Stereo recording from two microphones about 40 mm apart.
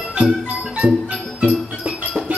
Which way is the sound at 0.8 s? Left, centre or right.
Right.